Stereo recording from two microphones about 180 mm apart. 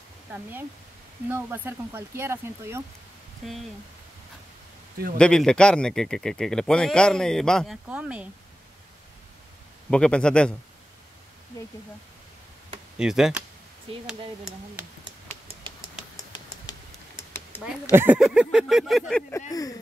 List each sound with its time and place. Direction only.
0.3 s speech: 10° right (ahead or behind)
3.4 s a man's voice: centre (ahead or behind)
5.1 s a man's voice: 5° left (ahead or behind)
9.8 s a man's voice: 5° left (ahead or behind)
12.9 s speech: 5° right (ahead or behind)
15.2 s a sound: 35° right (ahead or behind)
17.3 s a sound: 10° left (ahead or behind)
17.9 s a man's voice: 10° right (ahead or behind)